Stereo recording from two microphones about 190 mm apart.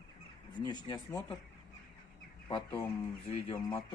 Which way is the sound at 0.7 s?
20° left (ahead or behind).